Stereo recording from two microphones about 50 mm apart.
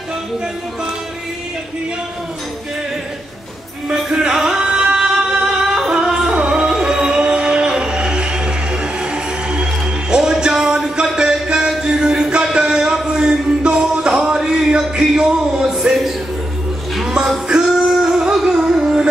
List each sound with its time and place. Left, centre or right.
3.9 s music: centre
17.8 s music: centre